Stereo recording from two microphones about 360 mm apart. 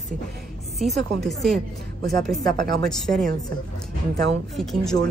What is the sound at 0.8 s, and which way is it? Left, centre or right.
A woman's voice, centre.